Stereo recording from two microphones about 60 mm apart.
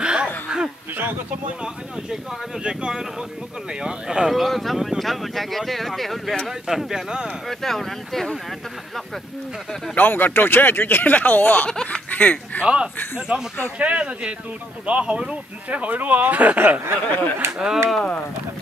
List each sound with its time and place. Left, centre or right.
0.0 s a sound: centre
2.6 s speech: centre
7.4 s speech: centre
9.9 s speech: left
11.7 s a sound: centre
12.1 s speech: left
12.6 s speech: centre
16.8 s speech: right